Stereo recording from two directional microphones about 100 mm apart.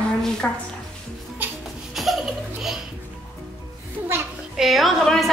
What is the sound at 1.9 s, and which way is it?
Laughter, centre (ahead or behind).